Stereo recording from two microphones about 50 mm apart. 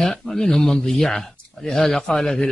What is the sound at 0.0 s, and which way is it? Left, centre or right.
Speech, centre.